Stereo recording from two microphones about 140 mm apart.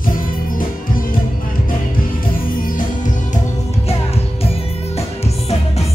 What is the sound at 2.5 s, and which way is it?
Music, 80° left.